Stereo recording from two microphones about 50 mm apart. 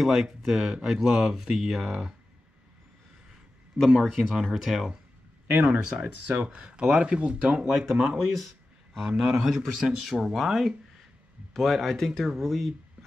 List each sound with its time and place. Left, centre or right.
0.0 s speech: centre
4.0 s a man's voice: centre
4.3 s speech: centre
5.5 s speech: right
7.6 s a man's voice: centre